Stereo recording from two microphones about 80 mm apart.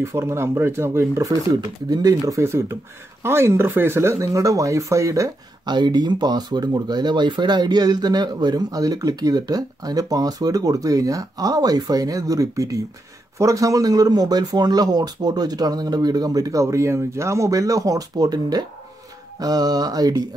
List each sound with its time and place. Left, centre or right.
0.0 s speech: right
2.4 s speech: right
5.7 s speech: right